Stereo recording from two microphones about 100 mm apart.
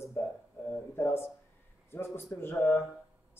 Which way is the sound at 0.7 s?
25° left (ahead or behind).